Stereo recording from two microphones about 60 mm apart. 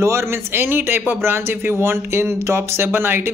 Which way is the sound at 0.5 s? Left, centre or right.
Right.